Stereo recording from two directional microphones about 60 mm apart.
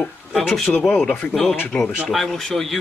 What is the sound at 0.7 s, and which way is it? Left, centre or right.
Speech, left.